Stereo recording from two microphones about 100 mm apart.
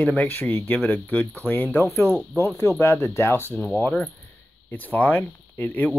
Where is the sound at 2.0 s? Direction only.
30° right (ahead or behind).